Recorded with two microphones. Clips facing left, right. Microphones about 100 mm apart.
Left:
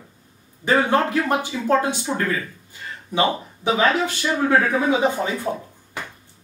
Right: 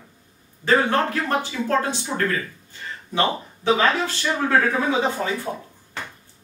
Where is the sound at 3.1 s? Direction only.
15° left (ahead or behind).